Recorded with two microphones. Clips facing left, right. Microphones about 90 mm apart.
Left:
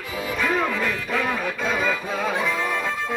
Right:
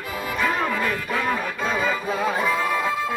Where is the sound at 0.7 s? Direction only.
5° right (ahead or behind).